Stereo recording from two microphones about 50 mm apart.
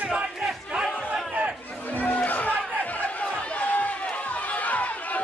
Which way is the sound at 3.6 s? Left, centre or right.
Left.